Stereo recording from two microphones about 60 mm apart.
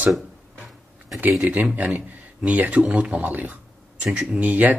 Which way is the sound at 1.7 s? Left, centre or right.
Right.